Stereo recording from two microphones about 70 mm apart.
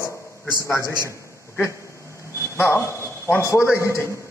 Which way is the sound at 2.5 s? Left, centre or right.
Left.